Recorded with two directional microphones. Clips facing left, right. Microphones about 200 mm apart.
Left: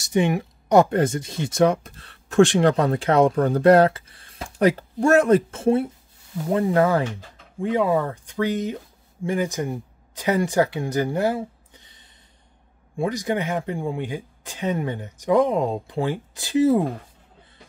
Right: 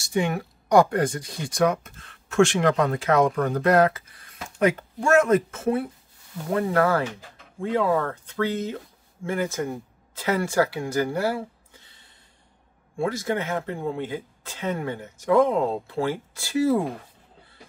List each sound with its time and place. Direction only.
0.0 s speech: 20° left (ahead or behind)
6.5 s speech: 20° left (ahead or behind)